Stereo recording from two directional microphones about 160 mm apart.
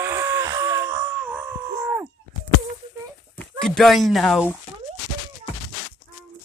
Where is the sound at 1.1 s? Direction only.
5° right (ahead or behind).